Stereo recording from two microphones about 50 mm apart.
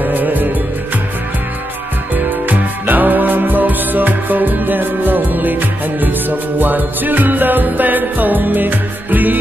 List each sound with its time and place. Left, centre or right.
0.0 s music: right
2.2 s music: right